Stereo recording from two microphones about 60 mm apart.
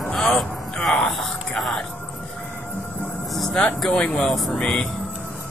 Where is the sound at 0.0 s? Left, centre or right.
Centre.